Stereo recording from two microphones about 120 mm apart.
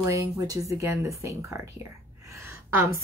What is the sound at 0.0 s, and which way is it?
A woman's voice, 25° right (ahead or behind).